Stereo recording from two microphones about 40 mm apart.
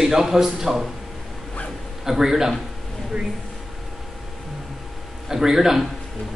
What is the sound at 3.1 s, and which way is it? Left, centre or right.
Speech, right.